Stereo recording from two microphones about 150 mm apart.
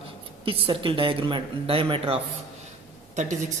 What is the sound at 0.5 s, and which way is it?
Speech, 35° right (ahead or behind).